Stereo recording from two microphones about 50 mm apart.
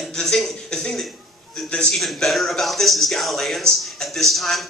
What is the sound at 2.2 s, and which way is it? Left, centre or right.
Speech, centre.